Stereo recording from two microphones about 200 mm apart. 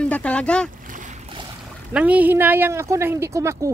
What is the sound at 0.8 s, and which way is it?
Splash, 40° right (ahead or behind).